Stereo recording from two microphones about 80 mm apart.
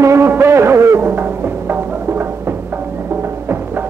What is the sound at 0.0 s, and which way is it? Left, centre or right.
Music, right.